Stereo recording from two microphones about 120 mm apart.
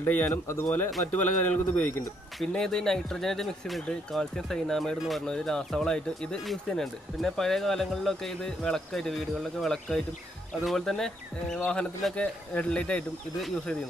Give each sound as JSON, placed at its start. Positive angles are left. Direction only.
{"t": 0.0, "sound": "speech", "side_deg": 15}